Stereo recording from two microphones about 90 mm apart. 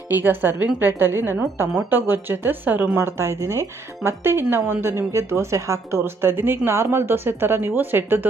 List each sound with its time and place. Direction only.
0.1 s speech: 20° right (ahead or behind)
3.0 s speech: 30° right (ahead or behind)